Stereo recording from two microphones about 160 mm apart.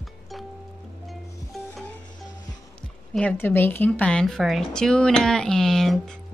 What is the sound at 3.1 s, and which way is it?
A woman's voice, 10° left (ahead or behind).